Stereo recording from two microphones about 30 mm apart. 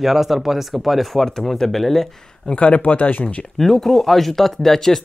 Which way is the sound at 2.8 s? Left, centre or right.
Left.